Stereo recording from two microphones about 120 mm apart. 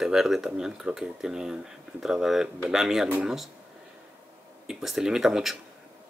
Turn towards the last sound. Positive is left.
turn(degrees=0)  # may be behind; listen again after turning